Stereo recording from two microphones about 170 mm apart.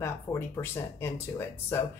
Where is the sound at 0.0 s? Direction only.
15° left (ahead or behind).